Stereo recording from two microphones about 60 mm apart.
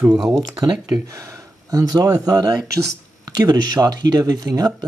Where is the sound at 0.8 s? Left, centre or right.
Right.